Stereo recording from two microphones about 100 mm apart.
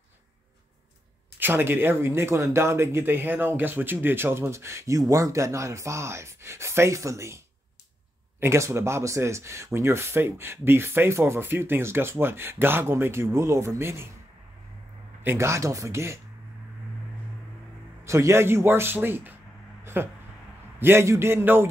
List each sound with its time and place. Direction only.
1.4 s speech: 20° right (ahead or behind)
15.2 s speech: 30° right (ahead or behind)
18.0 s speech: 30° right (ahead or behind)
19.8 s a sound: 25° right (ahead or behind)
20.8 s speech: 25° right (ahead or behind)